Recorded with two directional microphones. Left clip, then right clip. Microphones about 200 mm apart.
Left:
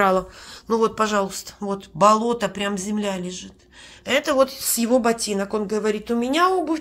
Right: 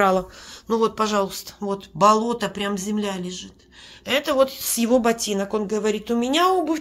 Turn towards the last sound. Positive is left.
turn(degrees=-15)  # may be behind; listen again after turning